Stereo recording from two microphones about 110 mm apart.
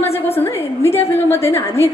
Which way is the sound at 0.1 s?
20° left (ahead or behind).